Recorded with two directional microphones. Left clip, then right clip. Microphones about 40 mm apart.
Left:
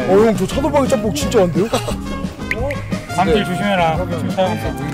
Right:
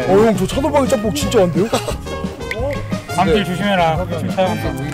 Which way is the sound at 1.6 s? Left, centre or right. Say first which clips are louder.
Even; centre.